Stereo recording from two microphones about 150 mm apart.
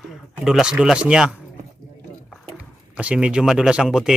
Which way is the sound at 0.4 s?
5° right (ahead or behind).